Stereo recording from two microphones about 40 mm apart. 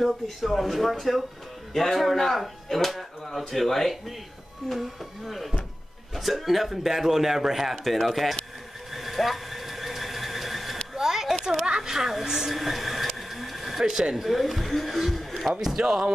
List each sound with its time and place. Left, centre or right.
0.0 s a man's voice: centre
8.9 s a sound: centre
11.4 s speech: centre
12.5 s a sound: centre
13.8 s speech: centre
14.2 s speech: centre
15.8 s speech: centre